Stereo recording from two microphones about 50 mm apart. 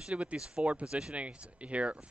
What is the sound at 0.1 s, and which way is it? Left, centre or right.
Speech, right.